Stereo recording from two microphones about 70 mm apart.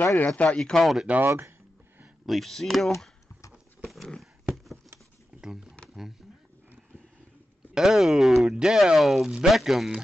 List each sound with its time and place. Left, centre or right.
0.0 s speech: left
0.6 s speech: centre
1.0 s speech: right
2.2 s speech: centre
3.8 s a sound: centre
5.4 s a sound: centre
7.7 s speech: centre